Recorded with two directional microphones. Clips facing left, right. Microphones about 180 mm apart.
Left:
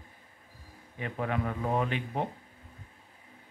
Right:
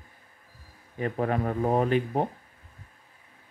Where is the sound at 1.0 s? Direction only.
40° right (ahead or behind).